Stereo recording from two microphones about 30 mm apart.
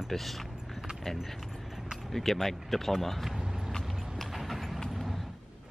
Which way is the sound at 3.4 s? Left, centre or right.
Centre.